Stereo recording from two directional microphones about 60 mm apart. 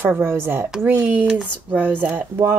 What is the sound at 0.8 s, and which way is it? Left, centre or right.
Speech, right.